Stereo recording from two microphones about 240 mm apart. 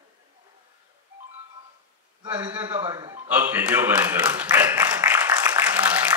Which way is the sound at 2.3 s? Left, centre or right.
Centre.